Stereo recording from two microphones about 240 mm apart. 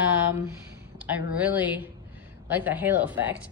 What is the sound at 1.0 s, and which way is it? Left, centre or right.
A woman's voice, centre.